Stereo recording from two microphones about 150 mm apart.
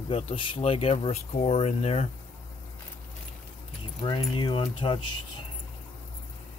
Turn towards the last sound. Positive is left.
turn(degrees=35)  # may be behind; listen again after turning